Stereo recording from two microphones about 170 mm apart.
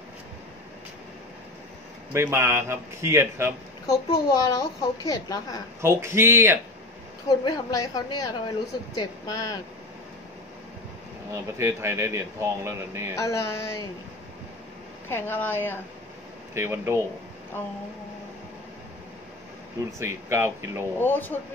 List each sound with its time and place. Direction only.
2.1 s speech: 15° right (ahead or behind)
3.8 s a child's voice: 20° left (ahead or behind)
5.8 s speech: 15° right (ahead or behind)
7.4 s a child's voice: 20° left (ahead or behind)
11.5 s speech: 15° right (ahead or behind)
13.1 s speech: 15° left (ahead or behind)
15.0 s speech: 15° left (ahead or behind)
16.5 s speech: 15° right (ahead or behind)
20.0 s speech: 15° right (ahead or behind)
21.0 s speech: 10° left (ahead or behind)